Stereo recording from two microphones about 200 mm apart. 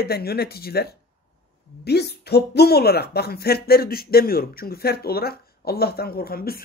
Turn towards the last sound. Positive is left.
turn(degrees=50)  # may be behind; listen again after turning